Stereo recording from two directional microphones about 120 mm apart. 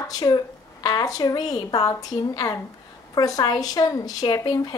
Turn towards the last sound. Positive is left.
turn(degrees=30)  # may be behind; listen again after turning